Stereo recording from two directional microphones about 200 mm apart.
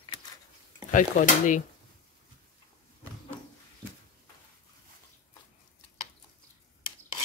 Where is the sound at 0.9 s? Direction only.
40° left (ahead or behind).